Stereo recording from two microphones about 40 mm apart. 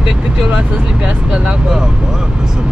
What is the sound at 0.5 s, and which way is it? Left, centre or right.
Speech, right.